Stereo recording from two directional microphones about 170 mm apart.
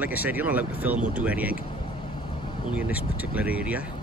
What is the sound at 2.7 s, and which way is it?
Speech, 10° right (ahead or behind).